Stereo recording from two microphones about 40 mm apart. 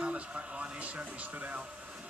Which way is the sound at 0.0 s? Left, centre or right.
Right.